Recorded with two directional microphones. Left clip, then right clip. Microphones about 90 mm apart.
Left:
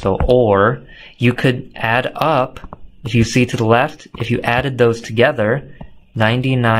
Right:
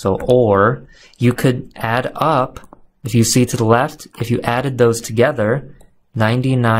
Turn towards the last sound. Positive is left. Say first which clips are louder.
# left 1 dB
turn(degrees=-40)  # may be behind; listen again after turning